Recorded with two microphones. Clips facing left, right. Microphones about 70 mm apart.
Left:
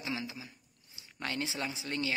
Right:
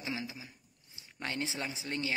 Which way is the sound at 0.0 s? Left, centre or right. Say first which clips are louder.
Left 1 dB; right.